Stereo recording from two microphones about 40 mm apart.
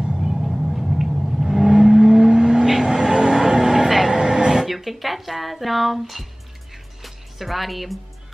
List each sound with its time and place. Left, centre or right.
0.0 s vehicle: centre
0.5 s a sound: centre
1.4 s vehicle: centre
4.6 s speech: centre
7.0 s music: centre